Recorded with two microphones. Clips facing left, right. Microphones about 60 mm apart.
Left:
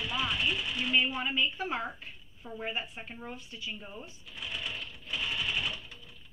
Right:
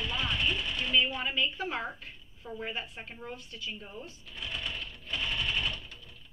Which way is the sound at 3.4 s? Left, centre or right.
Right.